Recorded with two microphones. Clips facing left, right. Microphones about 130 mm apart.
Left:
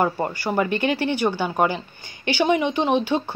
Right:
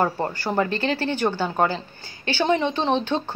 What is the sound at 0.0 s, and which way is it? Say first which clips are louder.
Speech: left 1 dB; 15° left (ahead or behind).